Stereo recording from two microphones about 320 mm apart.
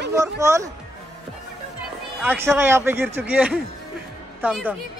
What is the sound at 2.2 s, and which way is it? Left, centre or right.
A man's voice, centre.